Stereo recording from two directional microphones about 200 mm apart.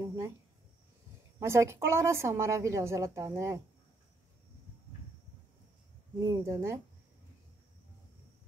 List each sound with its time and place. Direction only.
0.0 s cricket: 15° right (ahead or behind)
1.4 s a woman's voice: 15° right (ahead or behind)
6.2 s a woman's voice: 15° right (ahead or behind)